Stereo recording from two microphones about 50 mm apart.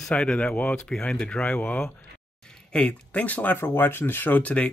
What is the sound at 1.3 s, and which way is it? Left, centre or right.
Speech, left.